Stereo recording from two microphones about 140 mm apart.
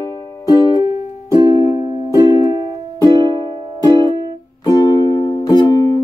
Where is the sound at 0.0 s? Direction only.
30° left (ahead or behind).